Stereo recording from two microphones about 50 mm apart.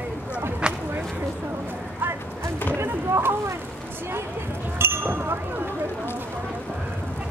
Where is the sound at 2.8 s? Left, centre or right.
Right.